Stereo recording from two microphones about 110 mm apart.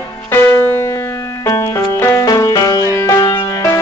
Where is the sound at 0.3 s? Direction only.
20° left (ahead or behind).